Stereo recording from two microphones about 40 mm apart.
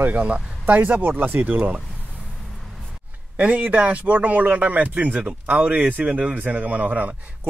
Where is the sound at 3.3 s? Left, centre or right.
Right.